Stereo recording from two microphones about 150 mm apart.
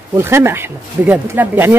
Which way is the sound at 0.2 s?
15° right (ahead or behind).